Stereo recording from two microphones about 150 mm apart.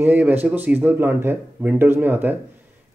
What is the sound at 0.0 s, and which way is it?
Speech, 15° right (ahead or behind).